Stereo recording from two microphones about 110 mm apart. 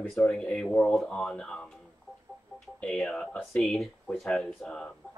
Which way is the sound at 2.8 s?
Centre (ahead or behind).